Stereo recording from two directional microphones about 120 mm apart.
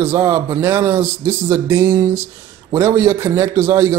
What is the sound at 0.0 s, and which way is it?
A man's voice, 20° right (ahead or behind).